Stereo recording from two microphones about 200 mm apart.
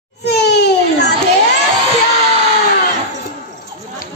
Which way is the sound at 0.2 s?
55° left (ahead or behind).